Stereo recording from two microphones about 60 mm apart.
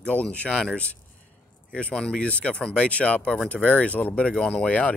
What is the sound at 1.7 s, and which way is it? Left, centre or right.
Speech, centre.